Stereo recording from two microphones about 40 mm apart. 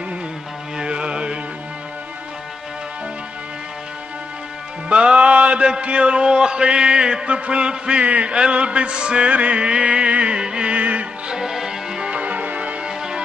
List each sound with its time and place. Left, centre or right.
0.7 s music: right
4.8 s music: right
11.3 s music: centre
12.0 s music: right
12.8 s music: right